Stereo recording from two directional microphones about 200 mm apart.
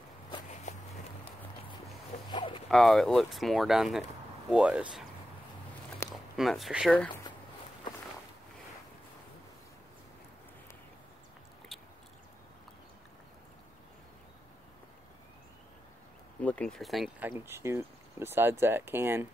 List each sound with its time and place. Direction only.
0.7 s a sound: 35° left (ahead or behind)
2.3 s a sound: 25° left (ahead or behind)
2.7 s speech: centre (ahead or behind)
6.1 s speech: centre (ahead or behind)
16.3 s speech: 5° left (ahead or behind)
17.3 s speech: 15° right (ahead or behind)